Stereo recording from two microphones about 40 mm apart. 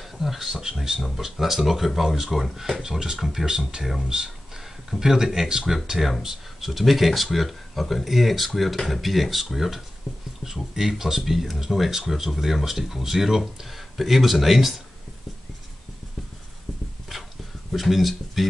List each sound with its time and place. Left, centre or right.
0.0 s speech: centre
3.4 s speech: centre
4.1 s a sound: centre
5.0 s speech: centre
17.7 s speech: centre